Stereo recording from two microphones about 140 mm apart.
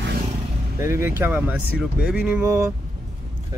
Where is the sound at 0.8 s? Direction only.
20° right (ahead or behind).